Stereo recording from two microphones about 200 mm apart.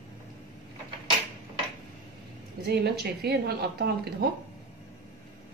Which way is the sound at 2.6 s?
55° right (ahead or behind).